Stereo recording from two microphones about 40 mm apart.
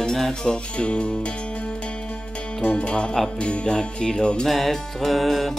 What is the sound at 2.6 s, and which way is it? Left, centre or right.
Music, left.